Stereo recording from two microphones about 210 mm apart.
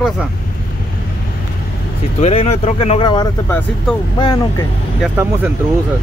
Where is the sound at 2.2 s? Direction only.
30° left (ahead or behind).